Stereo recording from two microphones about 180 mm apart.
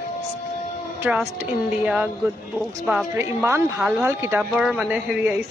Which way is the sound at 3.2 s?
15° right (ahead or behind).